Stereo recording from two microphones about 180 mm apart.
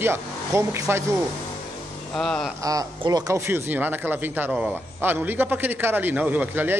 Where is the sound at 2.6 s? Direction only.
20° right (ahead or behind).